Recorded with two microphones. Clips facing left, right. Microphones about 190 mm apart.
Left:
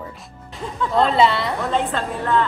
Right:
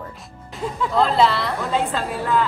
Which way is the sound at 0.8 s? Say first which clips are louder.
Left 1 dB; centre (ahead or behind).